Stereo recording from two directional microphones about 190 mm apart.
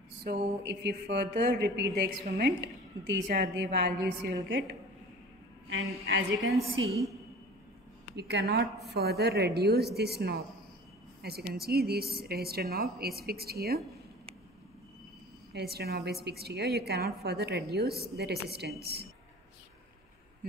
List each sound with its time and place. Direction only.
0.2 s a woman's voice: 60° right (ahead or behind)
4.3 s a woman's voice: 75° right (ahead or behind)
5.7 s a woman's voice: 85° right
8.2 s a woman's voice: 60° right (ahead or behind)
15.5 s a woman's voice: 55° right (ahead or behind)